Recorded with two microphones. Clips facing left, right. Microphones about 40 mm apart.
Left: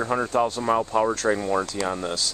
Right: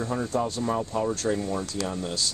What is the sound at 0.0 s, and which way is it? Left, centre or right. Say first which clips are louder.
Speech: left 5 dB; left.